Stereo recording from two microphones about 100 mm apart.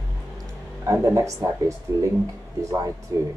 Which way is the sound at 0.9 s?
30° right (ahead or behind).